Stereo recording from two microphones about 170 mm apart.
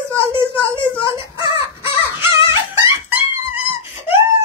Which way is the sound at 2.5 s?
15° right (ahead or behind).